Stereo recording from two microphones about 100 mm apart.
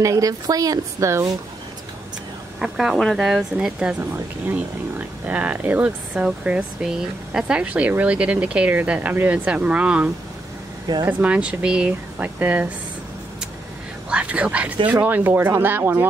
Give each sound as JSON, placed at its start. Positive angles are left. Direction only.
{"t": 0.0, "sound": "speech", "side_deg": -35}
{"t": 2.6, "sound": "speech", "side_deg": -5}
{"t": 14.1, "sound": "speech", "side_deg": -10}